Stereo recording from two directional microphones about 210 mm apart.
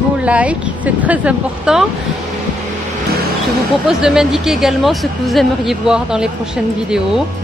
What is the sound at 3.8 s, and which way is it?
Speech, 5° right (ahead or behind).